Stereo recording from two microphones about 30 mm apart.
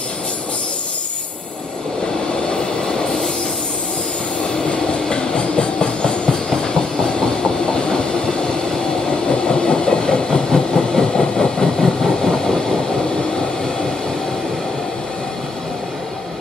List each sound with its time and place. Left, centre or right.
5.1 s train: left
9.5 s train: left
12.0 s vehicle: centre